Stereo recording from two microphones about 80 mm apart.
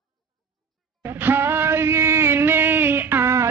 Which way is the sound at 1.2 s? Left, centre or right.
Right.